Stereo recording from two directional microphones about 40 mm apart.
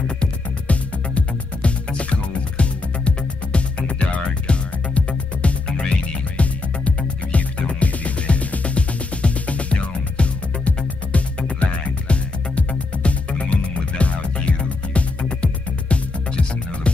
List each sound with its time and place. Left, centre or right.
0.2 s music: left